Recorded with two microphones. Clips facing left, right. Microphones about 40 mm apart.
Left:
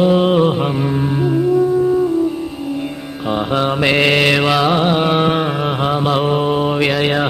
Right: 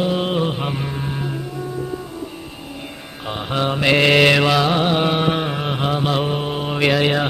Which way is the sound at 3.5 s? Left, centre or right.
Centre.